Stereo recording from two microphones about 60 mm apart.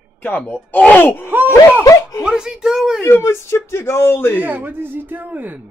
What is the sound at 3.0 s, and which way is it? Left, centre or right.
Speech, left.